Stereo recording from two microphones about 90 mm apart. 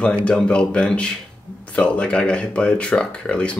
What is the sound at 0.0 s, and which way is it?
Speech, 10° left (ahead or behind).